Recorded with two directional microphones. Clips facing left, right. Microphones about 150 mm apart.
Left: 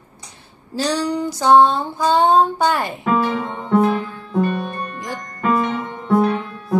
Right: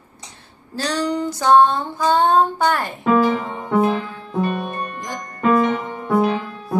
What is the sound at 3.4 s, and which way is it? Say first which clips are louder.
Music: left 2 dB; 10° right (ahead or behind).